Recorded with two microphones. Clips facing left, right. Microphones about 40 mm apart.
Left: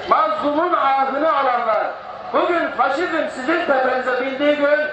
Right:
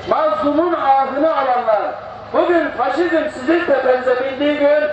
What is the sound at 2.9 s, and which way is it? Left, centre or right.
A man's voice, centre.